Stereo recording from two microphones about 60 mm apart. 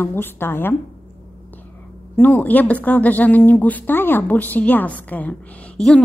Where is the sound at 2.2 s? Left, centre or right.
Left.